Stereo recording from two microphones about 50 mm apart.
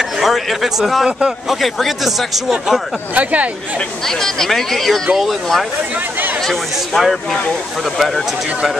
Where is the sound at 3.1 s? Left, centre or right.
Right.